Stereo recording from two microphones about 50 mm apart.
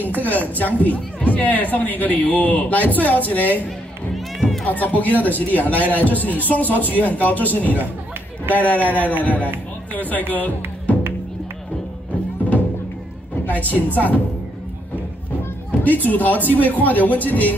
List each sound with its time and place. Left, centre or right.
0.2 s a woman's voice: left
4.1 s music: centre
4.6 s a woman's voice: left
13.5 s a woman's voice: left
15.8 s a woman's voice: left